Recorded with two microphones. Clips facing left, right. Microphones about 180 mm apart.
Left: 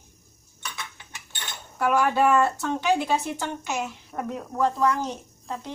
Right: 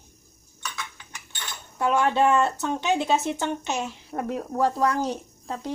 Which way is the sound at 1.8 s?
25° right (ahead or behind).